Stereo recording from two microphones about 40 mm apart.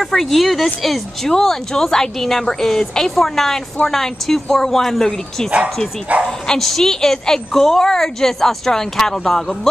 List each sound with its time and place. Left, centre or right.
0.0 s a woman's voice: centre
6.1 s speech: right
6.6 s a woman's voice: centre